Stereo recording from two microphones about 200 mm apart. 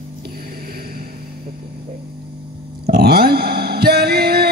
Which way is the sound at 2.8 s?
50° right (ahead or behind).